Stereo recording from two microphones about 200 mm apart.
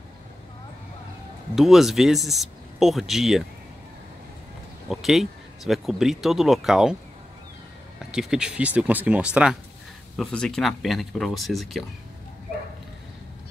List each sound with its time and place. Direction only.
1.5 s speech: centre (ahead or behind)
4.8 s speech: centre (ahead or behind)
8.1 s speech: 5° right (ahead or behind)